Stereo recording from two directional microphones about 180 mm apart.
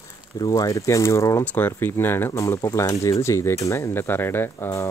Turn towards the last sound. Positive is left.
turn(degrees=15)  # may be behind; listen again after turning